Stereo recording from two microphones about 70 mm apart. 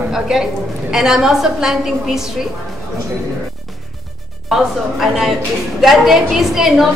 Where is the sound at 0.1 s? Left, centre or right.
Centre.